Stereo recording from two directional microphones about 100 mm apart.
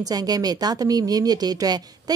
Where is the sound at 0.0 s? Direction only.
40° right (ahead or behind).